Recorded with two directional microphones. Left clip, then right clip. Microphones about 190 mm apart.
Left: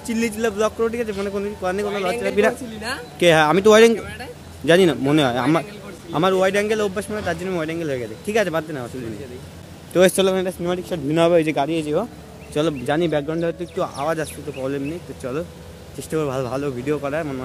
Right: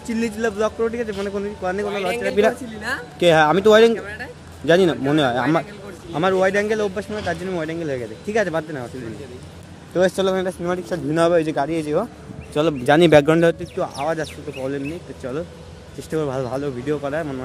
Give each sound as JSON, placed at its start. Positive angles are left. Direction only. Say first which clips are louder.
{"t": 0.0, "sound": "speech", "louder": "left 1 dB", "side_deg": 5}
{"t": 6.3, "sound": "speech", "louder": "right 2 dB", "side_deg": 5}
{"t": 9.9, "sound": "speech", "louder": "left 3 dB", "side_deg": 35}
{"t": 10.2, "sound": "speech", "louder": "left 1 dB", "side_deg": 20}
{"t": 12.8, "sound": "a man's voice", "louder": "right 6 dB", "side_deg": -10}
{"t": 13.1, "sound": "a man's voice", "louder": "right 9 dB", "side_deg": -25}
{"t": 13.7, "sound": "speech", "louder": "even", "side_deg": 10}